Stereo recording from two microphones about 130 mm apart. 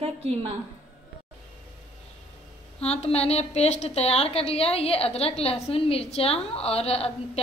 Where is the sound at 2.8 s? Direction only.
55° left (ahead or behind).